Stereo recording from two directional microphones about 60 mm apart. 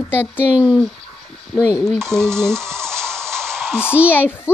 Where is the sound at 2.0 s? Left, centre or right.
Right.